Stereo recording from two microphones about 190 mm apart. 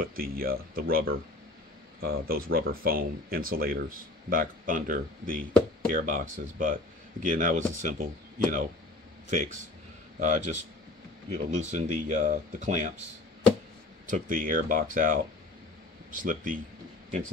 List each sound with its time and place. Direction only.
0.0 s speech: 50° right (ahead or behind)
14.0 s speech: 45° right (ahead or behind)